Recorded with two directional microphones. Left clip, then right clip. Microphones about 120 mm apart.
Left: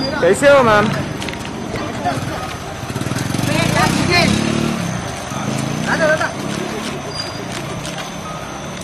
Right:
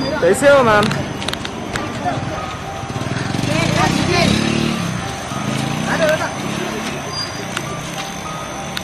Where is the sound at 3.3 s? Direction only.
30° left (ahead or behind).